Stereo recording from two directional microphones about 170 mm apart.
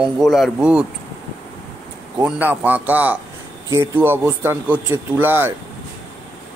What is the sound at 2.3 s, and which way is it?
Speech, 10° right (ahead or behind).